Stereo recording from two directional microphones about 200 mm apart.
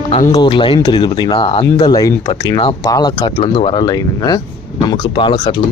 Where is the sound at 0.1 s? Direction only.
30° left (ahead or behind).